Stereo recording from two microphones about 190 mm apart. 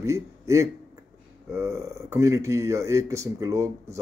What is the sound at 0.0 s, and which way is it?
A man's voice, 15° right (ahead or behind).